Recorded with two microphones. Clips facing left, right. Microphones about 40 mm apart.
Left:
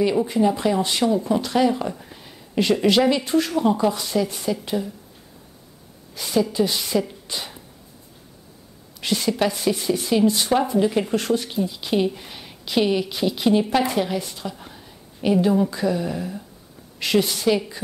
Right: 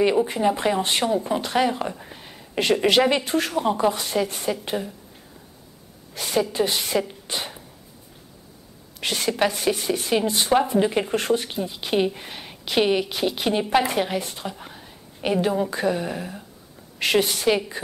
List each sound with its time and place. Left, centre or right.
0.0 s a woman's voice: right
6.1 s a woman's voice: right
9.0 s speech: right